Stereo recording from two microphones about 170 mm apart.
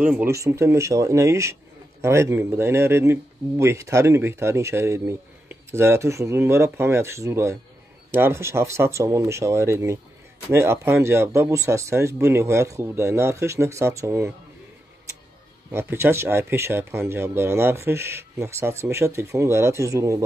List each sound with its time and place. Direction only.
0.0 s speech: 5° right (ahead or behind)
0.3 s speech: 15° right (ahead or behind)
15.7 s speech: 15° right (ahead or behind)